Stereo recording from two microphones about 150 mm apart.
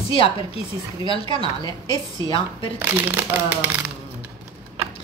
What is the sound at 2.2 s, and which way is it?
Speech, 35° left (ahead or behind).